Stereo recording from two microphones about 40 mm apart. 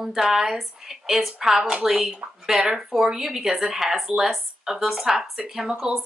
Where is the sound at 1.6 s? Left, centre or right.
Right.